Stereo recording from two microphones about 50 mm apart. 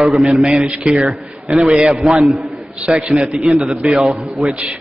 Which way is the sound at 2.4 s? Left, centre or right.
Centre.